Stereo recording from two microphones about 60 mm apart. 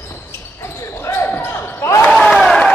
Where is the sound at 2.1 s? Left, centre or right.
Centre.